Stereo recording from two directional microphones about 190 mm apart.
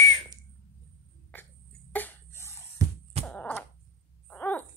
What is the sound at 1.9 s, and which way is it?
Cough, 10° left (ahead or behind).